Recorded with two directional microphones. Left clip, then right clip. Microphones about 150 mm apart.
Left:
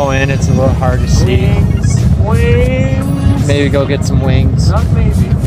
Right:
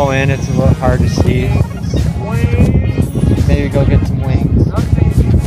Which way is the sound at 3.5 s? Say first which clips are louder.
Left 5 dB; 30° left (ahead or behind).